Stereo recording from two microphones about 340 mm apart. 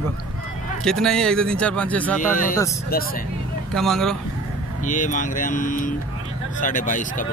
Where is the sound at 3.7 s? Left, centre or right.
Centre.